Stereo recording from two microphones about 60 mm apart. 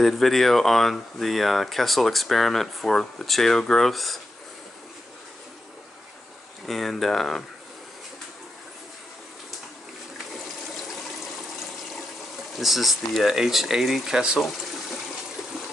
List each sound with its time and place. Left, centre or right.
0.0 s speech: centre
6.6 s speech: centre
12.5 s speech: centre